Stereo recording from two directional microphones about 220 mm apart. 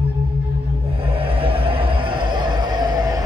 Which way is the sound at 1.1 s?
25° right (ahead or behind).